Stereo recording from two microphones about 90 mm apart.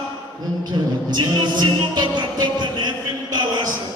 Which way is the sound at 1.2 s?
55° right (ahead or behind).